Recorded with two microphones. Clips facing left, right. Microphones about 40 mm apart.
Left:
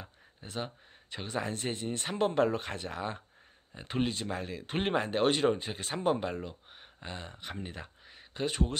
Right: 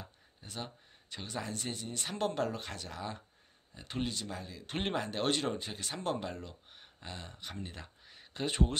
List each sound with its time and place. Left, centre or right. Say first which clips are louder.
0.0 s a sound: left 3 dB; left
1.1 s speech: left 5 dB; left
2.1 s speech: left 6 dB; left
4.4 s speech: left 7 dB; left
4.6 s speech: left 4 dB; centre
8.5 s speech: even; centre